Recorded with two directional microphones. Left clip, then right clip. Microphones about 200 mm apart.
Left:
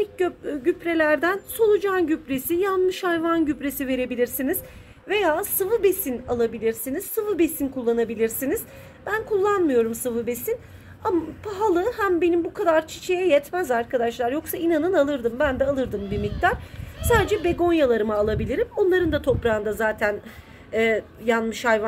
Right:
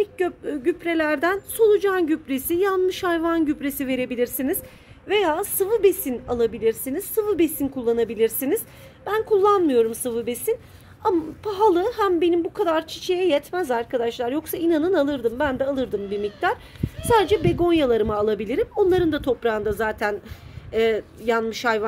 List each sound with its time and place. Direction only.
0.0 s a woman's voice: 50° right (ahead or behind)